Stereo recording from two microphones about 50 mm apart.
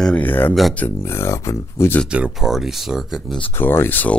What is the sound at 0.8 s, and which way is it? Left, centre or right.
Speech, left.